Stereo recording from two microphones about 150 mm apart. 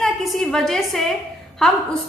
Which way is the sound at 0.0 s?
Centre (ahead or behind).